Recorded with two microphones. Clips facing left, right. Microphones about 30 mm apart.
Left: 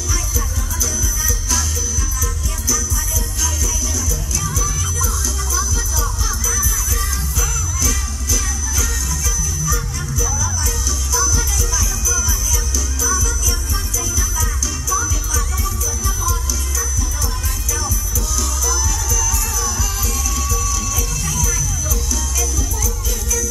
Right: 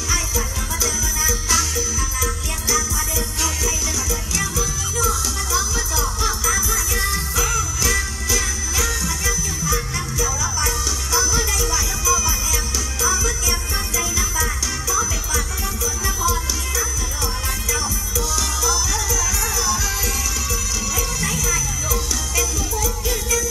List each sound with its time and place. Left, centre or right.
0.7 s music: right
3.3 s music: right
18.3 s music: right
20.9 s music: right